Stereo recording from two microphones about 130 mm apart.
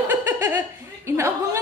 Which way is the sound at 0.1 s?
15° right (ahead or behind).